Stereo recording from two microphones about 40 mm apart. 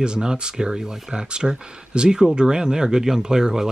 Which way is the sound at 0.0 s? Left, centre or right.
Right.